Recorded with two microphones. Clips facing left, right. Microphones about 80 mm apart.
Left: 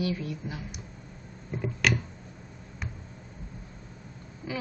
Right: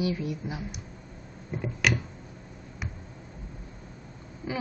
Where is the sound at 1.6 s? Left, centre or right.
Centre.